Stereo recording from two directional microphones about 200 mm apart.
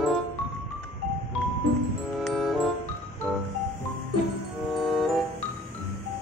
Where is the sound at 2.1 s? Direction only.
Centre (ahead or behind).